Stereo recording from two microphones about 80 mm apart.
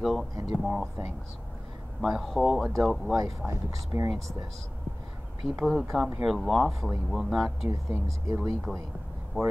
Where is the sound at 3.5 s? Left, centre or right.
Right.